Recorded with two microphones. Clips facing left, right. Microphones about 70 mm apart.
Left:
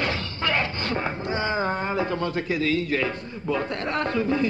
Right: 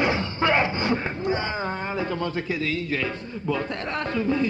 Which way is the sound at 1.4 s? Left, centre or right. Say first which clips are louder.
Left 3 dB; centre.